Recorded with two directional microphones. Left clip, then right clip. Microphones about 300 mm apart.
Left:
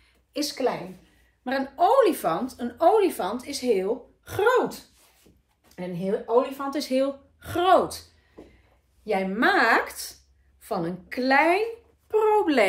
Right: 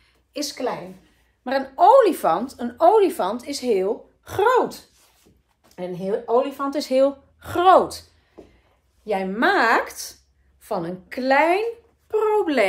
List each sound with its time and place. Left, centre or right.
0.3 s speech: centre
1.4 s speech: centre
9.0 s speech: centre